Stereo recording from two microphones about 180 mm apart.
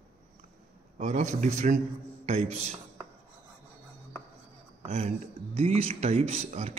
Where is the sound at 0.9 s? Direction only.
40° right (ahead or behind).